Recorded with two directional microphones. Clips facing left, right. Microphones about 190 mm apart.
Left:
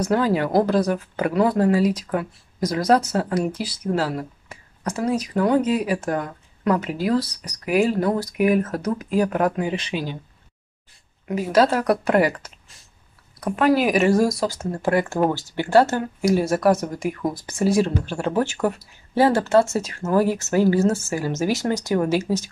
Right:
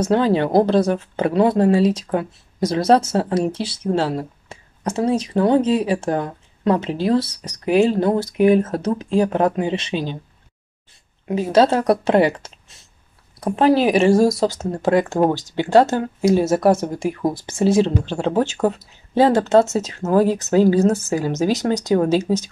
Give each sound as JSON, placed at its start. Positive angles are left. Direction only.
{"t": 0.0, "sound": "speech", "side_deg": -25}
{"t": 11.2, "sound": "speech", "side_deg": -25}